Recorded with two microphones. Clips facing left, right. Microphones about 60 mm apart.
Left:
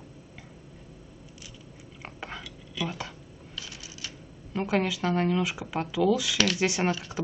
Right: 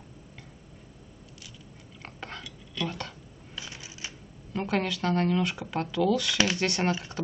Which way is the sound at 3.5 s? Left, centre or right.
Right.